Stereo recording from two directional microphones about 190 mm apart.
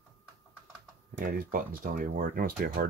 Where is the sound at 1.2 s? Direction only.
50° right (ahead or behind).